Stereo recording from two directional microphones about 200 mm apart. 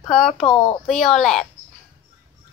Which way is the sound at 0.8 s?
Centre (ahead or behind).